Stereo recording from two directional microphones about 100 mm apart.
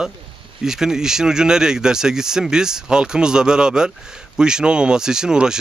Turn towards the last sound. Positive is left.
turn(degrees=-5)  # may be behind; listen again after turning